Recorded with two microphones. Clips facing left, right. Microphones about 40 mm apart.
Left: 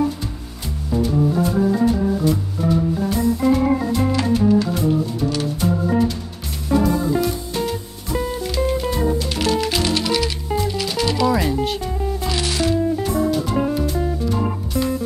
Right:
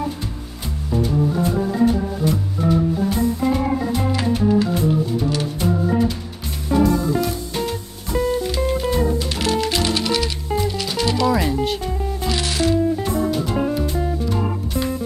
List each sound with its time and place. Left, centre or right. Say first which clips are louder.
0.9 s music: left 1 dB; centre
3.1 s organ: left 2 dB; centre
5.3 s music: even; centre